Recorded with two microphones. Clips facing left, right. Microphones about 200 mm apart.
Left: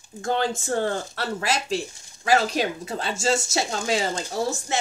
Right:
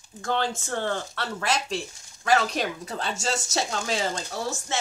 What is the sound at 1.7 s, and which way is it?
Speech, 5° left (ahead or behind).